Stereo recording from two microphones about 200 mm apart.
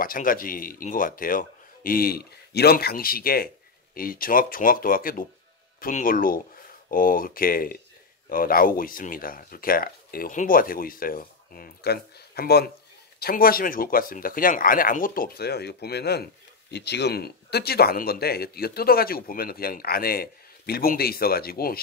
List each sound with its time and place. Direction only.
0.0 s speech: 45° left (ahead or behind)